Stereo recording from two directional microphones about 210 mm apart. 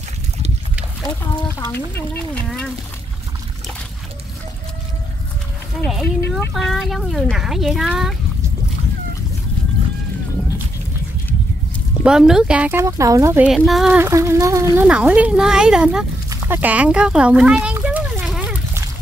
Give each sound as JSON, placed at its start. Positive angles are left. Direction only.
{"t": 1.2, "sound": "speech", "side_deg": 10}
{"t": 5.8, "sound": "speech", "side_deg": 0}
{"t": 12.0, "sound": "speech", "side_deg": -5}
{"t": 13.5, "sound": "speech", "side_deg": 0}
{"t": 16.4, "sound": "a sound", "side_deg": -10}